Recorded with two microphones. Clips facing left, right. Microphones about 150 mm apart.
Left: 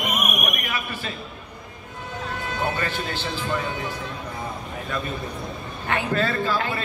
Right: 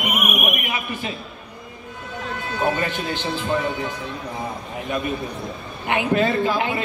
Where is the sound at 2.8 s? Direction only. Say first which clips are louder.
Right 3 dB; 15° right (ahead or behind).